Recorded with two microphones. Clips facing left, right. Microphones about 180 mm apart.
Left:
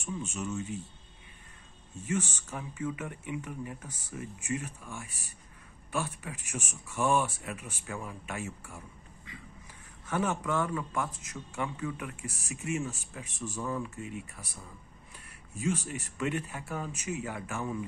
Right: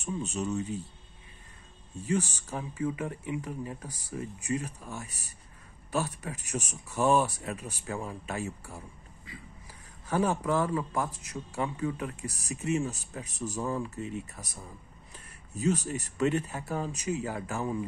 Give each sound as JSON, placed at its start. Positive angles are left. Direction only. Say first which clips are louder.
{"t": 0.0, "sound": "a man's voice", "louder": "right 4 dB", "side_deg": -35}
{"t": 2.0, "sound": "a man's voice", "louder": "right 3 dB", "side_deg": -35}